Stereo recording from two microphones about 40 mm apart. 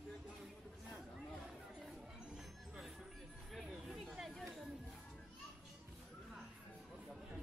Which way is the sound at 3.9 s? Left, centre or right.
Centre.